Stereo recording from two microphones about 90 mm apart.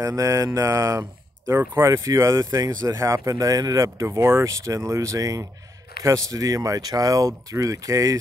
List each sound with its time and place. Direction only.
0.0 s speech: 35° right (ahead or behind)
3.0 s speech: 35° right (ahead or behind)